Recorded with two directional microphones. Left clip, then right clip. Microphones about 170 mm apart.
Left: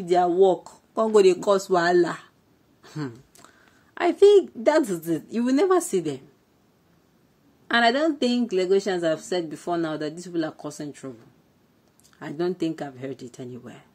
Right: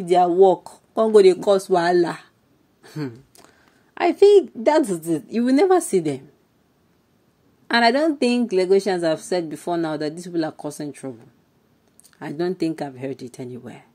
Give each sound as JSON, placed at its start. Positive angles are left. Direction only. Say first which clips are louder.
{"t": 0.0, "sound": "a woman's voice", "louder": "right 4 dB", "side_deg": -20}
{"t": 7.6, "sound": "speech", "louder": "right 3 dB", "side_deg": -30}